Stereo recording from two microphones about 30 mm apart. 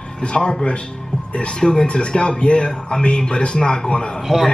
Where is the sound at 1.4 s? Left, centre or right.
Left.